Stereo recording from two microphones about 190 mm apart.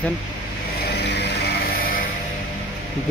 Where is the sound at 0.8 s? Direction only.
60° left (ahead or behind).